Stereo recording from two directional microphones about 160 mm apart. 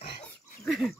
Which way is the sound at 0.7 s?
Centre (ahead or behind).